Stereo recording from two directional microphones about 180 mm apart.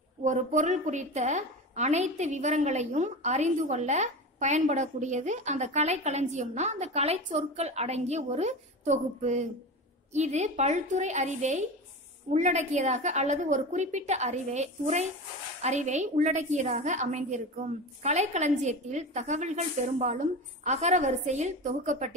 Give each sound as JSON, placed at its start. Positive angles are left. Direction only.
{"t": 0.2, "sound": "a woman's voice", "side_deg": -45}